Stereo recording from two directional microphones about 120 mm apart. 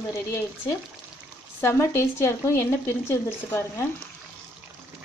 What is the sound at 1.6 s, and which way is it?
Speech, 20° left (ahead or behind).